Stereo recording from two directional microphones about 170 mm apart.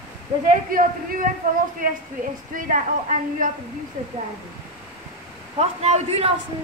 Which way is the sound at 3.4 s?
55° right (ahead or behind).